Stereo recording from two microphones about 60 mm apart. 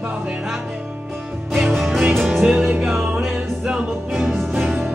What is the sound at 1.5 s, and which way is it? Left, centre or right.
Music, centre.